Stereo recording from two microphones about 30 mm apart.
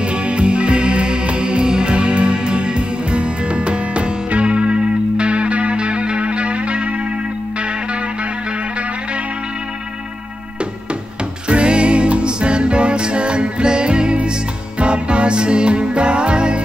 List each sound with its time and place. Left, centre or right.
0.0 s music: right
11.4 s music: right